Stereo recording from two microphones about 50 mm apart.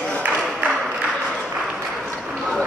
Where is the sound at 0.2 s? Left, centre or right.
Right.